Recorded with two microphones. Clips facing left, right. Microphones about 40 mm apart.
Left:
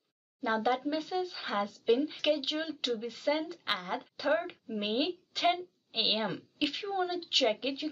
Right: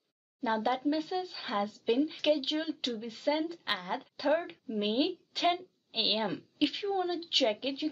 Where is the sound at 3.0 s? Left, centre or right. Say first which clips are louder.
Right 3 dB; centre.